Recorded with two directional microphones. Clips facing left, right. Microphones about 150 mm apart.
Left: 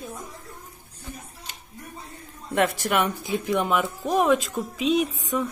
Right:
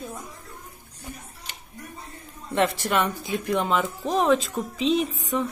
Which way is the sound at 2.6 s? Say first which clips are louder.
Even; 5° left (ahead or behind).